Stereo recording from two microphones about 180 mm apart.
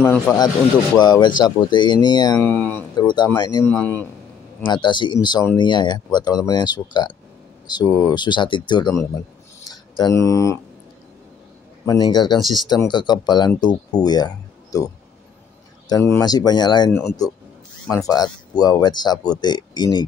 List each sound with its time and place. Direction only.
0.0 s speech: 10° left (ahead or behind)
0.9 s speech: 25° left (ahead or behind)
2.5 s speech: 10° left (ahead or behind)
3.0 s speech: 25° left (ahead or behind)
3.6 s speech: 10° left (ahead or behind)
4.6 s speech: 25° left (ahead or behind)
11.8 s speech: 20° left (ahead or behind)
12.4 s speech: centre (ahead or behind)
12.9 s speech: 25° left (ahead or behind)
15.9 s speech: 20° left (ahead or behind)